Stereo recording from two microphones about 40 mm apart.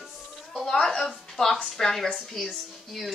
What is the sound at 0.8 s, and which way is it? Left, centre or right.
A woman's voice, centre.